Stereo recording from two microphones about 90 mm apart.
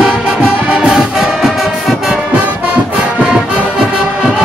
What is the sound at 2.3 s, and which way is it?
Music, 15° right (ahead or behind).